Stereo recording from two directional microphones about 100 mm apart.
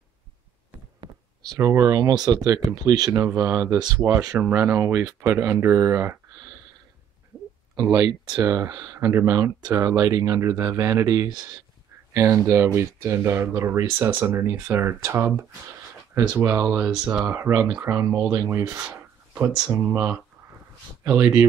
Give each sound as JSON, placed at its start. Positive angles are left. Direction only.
{"t": 1.6, "sound": "speech", "side_deg": -30}
{"t": 3.7, "sound": "speech", "side_deg": -45}
{"t": 4.0, "sound": "speech", "side_deg": -35}
{"t": 4.4, "sound": "speech", "side_deg": -20}
{"t": 7.8, "sound": "speech", "side_deg": -35}
{"t": 16.6, "sound": "speech", "side_deg": -10}
{"t": 18.0, "sound": "speech", "side_deg": -5}
{"t": 18.3, "sound": "speech", "side_deg": -25}
{"t": 18.9, "sound": "a sound", "side_deg": -20}
{"t": 19.7, "sound": "speech", "side_deg": -20}